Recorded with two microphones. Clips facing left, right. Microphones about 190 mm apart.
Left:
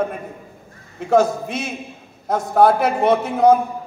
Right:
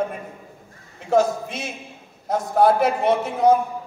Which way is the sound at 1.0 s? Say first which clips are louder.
Left 3 dB; 55° left (ahead or behind).